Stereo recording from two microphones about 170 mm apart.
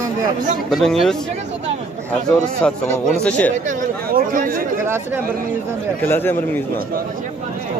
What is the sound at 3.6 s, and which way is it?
Speech, 55° right (ahead or behind).